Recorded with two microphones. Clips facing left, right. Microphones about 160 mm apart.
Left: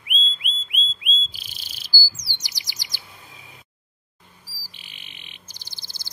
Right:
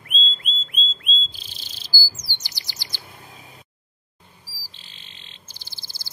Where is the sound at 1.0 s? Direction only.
10° left (ahead or behind).